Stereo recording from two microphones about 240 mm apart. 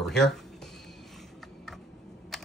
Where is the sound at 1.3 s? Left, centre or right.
Centre.